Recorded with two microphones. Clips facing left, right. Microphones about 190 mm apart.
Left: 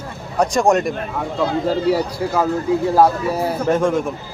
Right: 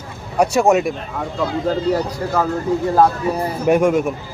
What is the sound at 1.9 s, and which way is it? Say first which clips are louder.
A man's voice: left 1 dB; 10° left (ahead or behind).